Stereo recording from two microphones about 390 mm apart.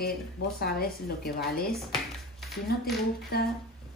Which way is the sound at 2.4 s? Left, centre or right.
Centre.